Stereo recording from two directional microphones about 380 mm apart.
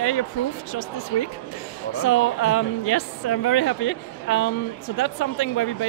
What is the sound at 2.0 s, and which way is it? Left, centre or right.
Speech, left.